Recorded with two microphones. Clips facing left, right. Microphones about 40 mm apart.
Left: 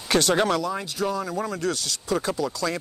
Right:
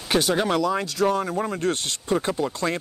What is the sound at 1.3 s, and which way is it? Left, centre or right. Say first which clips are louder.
Speech: right 2 dB; right.